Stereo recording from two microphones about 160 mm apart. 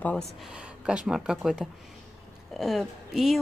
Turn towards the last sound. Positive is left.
turn(degrees=0)  # may be behind; listen again after turning